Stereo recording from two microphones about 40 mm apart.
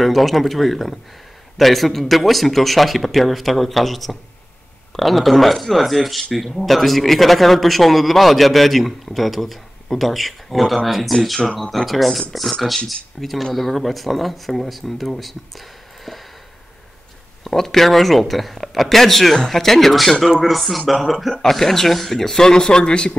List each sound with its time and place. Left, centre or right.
0.0 s speech: centre
16.1 s a sound: centre
17.4 s a man's voice: centre